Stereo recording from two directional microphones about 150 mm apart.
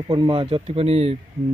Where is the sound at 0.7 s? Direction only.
45° right (ahead or behind).